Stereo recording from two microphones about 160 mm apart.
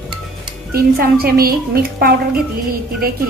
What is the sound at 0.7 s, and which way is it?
A woman's voice, 70° right (ahead or behind).